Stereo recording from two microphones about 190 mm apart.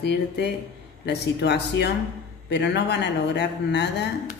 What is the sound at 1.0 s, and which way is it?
A man's voice, 65° left (ahead or behind).